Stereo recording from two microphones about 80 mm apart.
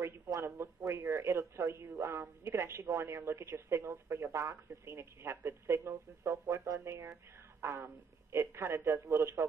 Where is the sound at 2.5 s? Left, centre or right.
Right.